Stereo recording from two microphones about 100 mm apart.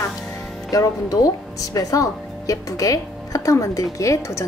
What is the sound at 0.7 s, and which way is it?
Speech, 35° left (ahead or behind).